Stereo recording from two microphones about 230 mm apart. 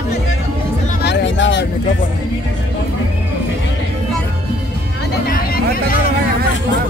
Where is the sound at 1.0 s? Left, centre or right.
Left.